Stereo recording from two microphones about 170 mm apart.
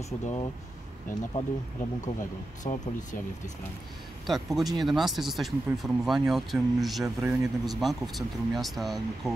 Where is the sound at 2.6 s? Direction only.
45° left (ahead or behind).